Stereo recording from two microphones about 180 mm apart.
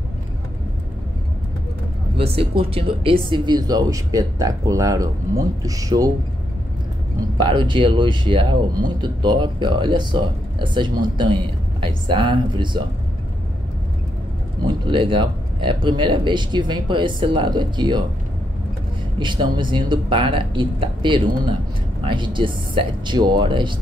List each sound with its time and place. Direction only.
2.1 s speech: 30° right (ahead or behind)
7.3 s speech: 25° right (ahead or behind)
14.9 s speech: 30° right (ahead or behind)
19.1 s speech: 25° right (ahead or behind)